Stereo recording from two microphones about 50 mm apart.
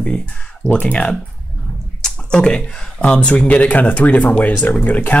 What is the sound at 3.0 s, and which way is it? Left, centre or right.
Speech, centre.